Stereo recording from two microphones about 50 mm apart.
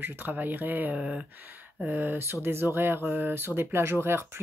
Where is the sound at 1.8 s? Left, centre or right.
Right.